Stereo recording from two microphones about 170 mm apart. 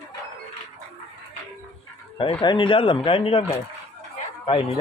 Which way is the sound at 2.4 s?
30° left (ahead or behind).